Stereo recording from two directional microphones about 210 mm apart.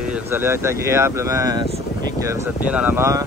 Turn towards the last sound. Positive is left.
turn(degrees=-15)  # may be behind; listen again after turning